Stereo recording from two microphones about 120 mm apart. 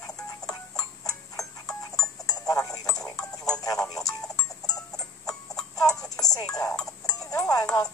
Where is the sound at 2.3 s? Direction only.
30° left (ahead or behind).